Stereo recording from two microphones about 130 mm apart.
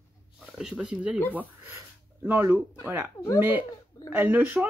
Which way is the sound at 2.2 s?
15° right (ahead or behind).